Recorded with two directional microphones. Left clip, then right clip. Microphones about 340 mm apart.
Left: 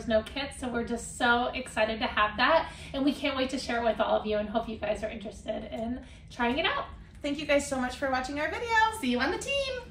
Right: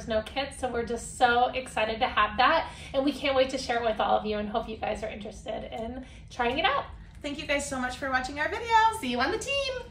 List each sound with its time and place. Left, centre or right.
0.1 s a woman's voice: centre
6.3 s a woman's voice: centre
7.2 s a woman's voice: centre